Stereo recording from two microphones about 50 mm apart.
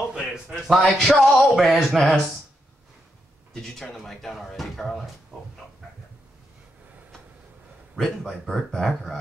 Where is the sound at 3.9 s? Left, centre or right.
Centre.